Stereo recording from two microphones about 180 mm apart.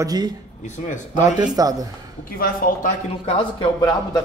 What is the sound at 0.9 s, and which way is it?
Speech, 45° left (ahead or behind).